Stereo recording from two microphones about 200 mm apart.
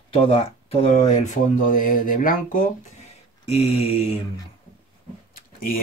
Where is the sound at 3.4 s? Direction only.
30° left (ahead or behind).